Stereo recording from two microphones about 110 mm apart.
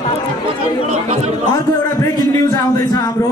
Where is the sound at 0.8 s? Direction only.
90° right.